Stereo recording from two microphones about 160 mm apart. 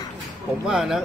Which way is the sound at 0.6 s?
Centre (ahead or behind).